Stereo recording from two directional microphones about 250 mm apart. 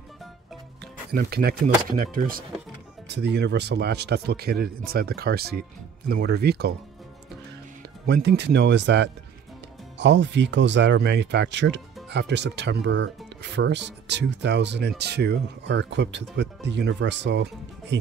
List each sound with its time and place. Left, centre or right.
1.1 s a man's voice: right
8.1 s speech: right